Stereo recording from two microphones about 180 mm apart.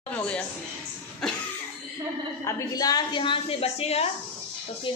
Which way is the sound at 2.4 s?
20° left (ahead or behind).